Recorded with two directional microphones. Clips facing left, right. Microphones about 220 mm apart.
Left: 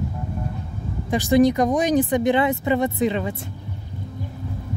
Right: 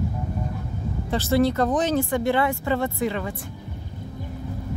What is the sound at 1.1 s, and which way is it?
Speech, 15° left (ahead or behind).